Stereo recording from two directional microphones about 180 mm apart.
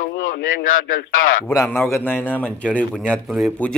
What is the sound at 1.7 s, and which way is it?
A man's voice, 10° left (ahead or behind).